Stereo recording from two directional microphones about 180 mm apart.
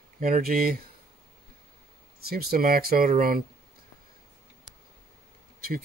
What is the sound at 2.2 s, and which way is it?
Speech, 55° right (ahead or behind).